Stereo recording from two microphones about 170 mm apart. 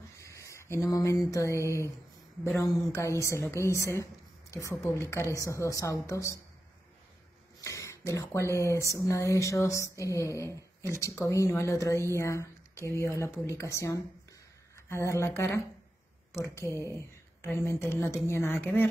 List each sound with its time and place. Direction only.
0.2 s a sound: 20° left (ahead or behind)
2.6 s speech: 15° left (ahead or behind)
7.6 s speech: 20° left (ahead or behind)